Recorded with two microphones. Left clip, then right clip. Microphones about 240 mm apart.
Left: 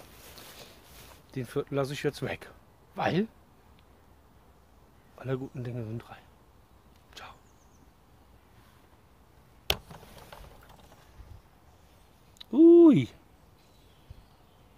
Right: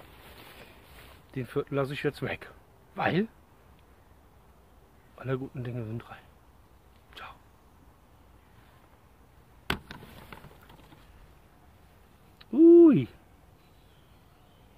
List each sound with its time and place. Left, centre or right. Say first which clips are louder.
1.3 s speech: right 1 dB; centre
5.1 s speech: right 1 dB; centre
7.2 s a sound: right 2 dB; centre
12.4 s owl: right 1 dB; left